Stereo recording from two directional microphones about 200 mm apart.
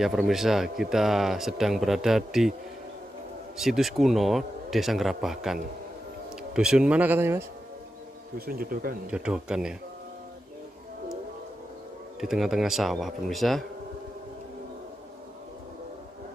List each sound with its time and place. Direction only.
0.0 s speech: centre (ahead or behind)
3.5 s a man's voice: centre (ahead or behind)
8.4 s speech: 45° right (ahead or behind)
9.1 s speech: 5° right (ahead or behind)
12.2 s speech: centre (ahead or behind)